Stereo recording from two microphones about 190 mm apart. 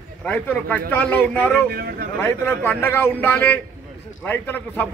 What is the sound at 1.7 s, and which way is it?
Speech, 55° right (ahead or behind).